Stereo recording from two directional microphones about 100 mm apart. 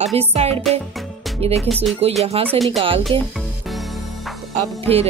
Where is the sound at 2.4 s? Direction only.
75° right (ahead or behind).